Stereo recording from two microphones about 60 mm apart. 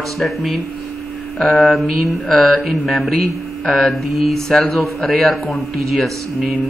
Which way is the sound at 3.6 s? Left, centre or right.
Centre.